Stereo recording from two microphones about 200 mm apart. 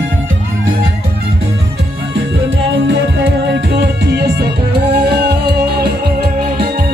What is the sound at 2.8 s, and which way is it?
Music, 65° right (ahead or behind).